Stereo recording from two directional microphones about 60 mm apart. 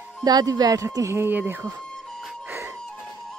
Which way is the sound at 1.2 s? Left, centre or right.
Right.